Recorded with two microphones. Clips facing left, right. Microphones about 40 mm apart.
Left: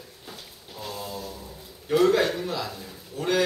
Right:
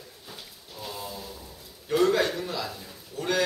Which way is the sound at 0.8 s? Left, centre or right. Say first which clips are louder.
Left 3 dB; centre.